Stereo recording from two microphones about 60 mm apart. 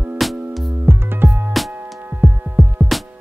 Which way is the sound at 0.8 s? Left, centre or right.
Right.